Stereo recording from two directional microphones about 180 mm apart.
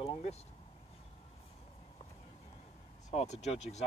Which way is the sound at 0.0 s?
35° left (ahead or behind).